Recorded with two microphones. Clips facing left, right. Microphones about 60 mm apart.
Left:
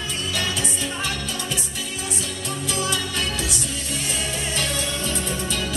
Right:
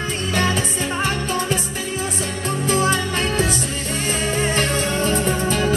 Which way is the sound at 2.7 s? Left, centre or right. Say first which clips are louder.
Right 7 dB; right.